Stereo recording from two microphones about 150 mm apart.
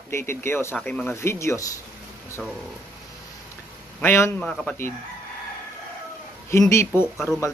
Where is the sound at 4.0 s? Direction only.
15° left (ahead or behind).